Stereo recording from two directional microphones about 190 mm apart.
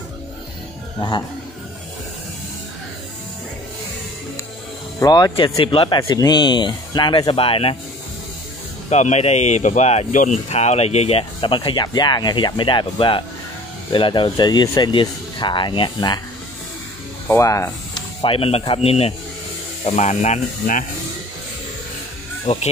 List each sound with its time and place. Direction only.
0.9 s speech: 20° left (ahead or behind)
5.0 s speech: 20° left (ahead or behind)
8.9 s speech: 35° left (ahead or behind)
17.3 s speech: 15° left (ahead or behind)
18.2 s speech: 30° left (ahead or behind)
22.5 s speech: 40° left (ahead or behind)